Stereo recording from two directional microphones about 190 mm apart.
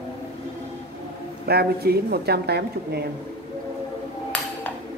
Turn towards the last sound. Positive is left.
turn(degrees=5)  # may be behind; listen again after turning